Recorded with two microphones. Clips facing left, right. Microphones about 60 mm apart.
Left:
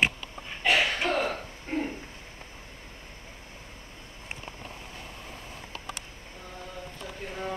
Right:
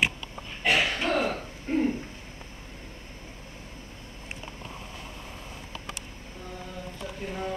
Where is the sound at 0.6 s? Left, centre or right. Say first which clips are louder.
Even; centre.